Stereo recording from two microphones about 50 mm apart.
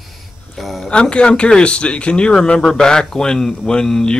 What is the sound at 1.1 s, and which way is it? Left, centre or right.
A man's voice, centre.